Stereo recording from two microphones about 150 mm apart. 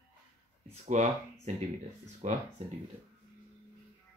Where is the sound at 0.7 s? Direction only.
50° right (ahead or behind).